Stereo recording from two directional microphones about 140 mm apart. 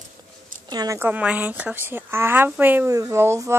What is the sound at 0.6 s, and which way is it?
Speech, 30° right (ahead or behind).